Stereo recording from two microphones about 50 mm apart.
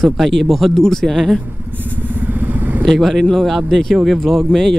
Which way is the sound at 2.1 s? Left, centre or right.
Right.